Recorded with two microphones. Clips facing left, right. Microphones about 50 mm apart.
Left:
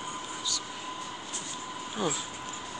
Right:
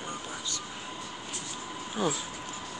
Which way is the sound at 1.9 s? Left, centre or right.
Centre.